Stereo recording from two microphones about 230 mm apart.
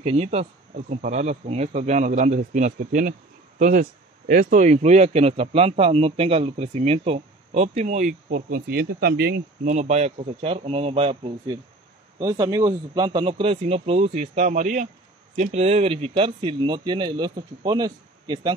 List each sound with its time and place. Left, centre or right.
0.0 s speech: right
9.8 s speech: right